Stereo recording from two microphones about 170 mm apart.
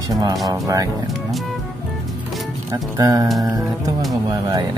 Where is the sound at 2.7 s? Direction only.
20° right (ahead or behind).